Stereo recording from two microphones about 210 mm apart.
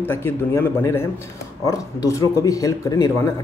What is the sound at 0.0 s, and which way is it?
Speech, 10° left (ahead or behind).